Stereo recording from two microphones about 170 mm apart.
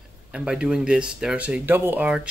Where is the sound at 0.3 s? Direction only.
5° right (ahead or behind).